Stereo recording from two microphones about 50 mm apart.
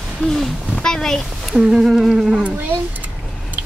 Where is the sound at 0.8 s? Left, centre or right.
Centre.